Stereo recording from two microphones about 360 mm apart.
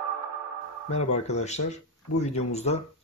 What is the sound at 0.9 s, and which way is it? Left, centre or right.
Speech, centre.